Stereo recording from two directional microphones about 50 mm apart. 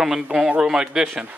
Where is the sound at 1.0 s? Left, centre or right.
Right.